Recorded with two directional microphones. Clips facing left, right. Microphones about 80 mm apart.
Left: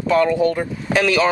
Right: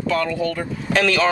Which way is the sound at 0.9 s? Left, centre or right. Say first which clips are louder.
Left 1 dB; centre.